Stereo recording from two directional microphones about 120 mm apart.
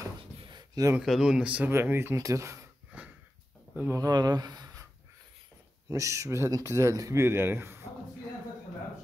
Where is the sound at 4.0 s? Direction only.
35° right (ahead or behind).